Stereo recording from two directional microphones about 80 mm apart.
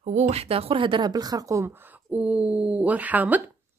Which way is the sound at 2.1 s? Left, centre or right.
Centre.